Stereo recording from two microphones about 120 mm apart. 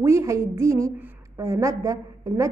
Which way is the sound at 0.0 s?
25° right (ahead or behind).